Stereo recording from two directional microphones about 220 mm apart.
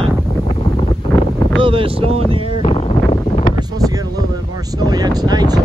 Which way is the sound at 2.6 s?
25° left (ahead or behind).